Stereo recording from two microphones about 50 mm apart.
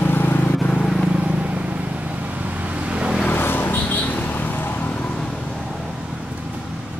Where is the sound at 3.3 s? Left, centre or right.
Left.